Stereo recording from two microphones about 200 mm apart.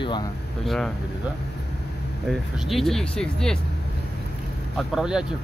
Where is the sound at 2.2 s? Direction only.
Centre (ahead or behind).